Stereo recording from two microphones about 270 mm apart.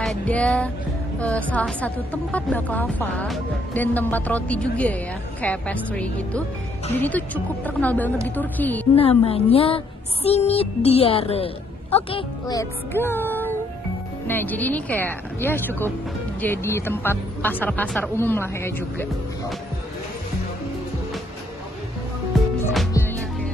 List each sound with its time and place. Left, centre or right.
0.0 s speech: centre
9.2 s music: left
14.2 s speech: centre
22.9 s music: centre